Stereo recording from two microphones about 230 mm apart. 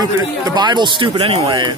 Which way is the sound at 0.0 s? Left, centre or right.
Centre.